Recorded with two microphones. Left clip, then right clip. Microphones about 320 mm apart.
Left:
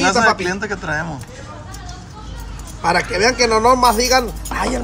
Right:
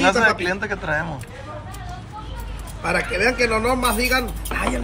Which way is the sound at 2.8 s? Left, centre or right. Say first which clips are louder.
Left 5 dB; left.